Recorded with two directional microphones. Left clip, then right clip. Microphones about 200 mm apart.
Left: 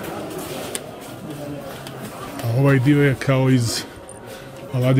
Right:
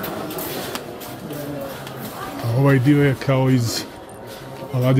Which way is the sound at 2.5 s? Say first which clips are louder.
Even; 10° left (ahead or behind).